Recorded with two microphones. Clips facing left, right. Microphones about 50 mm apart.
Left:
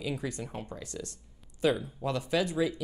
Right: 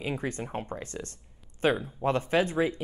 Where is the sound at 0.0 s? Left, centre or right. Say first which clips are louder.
Right 2 dB; right.